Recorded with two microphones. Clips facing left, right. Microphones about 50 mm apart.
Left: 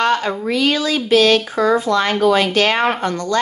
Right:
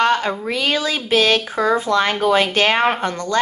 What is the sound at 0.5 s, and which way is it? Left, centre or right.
A woman's voice, right.